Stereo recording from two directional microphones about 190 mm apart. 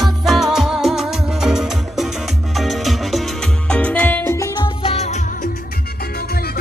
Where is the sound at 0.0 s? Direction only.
Centre (ahead or behind); by 5.5 s 40° left (ahead or behind).